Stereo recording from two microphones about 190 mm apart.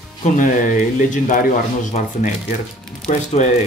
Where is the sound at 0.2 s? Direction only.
40° left (ahead or behind).